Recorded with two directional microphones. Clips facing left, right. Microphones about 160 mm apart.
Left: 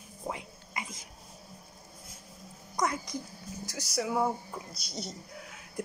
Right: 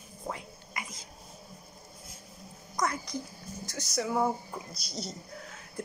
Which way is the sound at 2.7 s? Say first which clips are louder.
Left 1 dB; 15° left (ahead or behind).